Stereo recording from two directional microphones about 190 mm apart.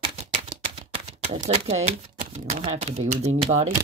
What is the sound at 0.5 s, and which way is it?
Speech, 30° right (ahead or behind).